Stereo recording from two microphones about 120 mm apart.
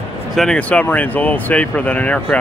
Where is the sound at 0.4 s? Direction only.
10° left (ahead or behind).